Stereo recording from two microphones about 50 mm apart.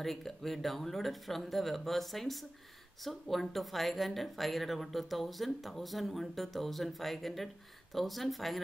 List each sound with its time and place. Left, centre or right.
0.0 s speech: centre